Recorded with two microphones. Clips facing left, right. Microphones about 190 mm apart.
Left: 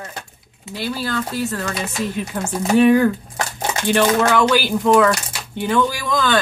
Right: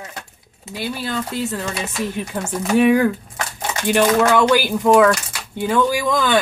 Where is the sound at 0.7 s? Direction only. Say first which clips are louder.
Left 1 dB; 15° right (ahead or behind).